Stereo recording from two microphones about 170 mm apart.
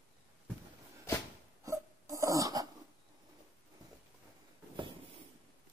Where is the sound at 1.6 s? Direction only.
20° right (ahead or behind).